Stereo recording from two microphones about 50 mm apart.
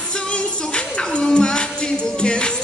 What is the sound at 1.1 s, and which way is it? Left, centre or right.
Music, centre.